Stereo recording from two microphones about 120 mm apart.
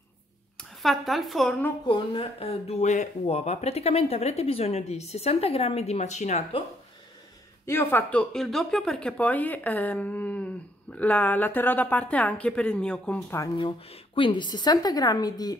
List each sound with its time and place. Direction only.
0.6 s speech: centre (ahead or behind)
1.9 s speech: 45° left (ahead or behind); by 6.4 s 75° left (ahead or behind)
7.6 s speech: 20° left (ahead or behind)
13.6 s a woman's voice: 45° left (ahead or behind)